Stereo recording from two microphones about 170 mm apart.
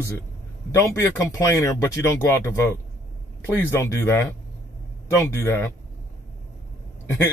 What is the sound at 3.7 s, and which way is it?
Speech, 15° left (ahead or behind).